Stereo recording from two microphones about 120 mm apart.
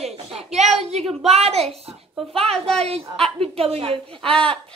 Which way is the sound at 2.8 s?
55° right (ahead or behind).